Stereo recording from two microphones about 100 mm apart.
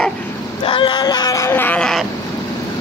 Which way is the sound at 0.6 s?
55° left (ahead or behind).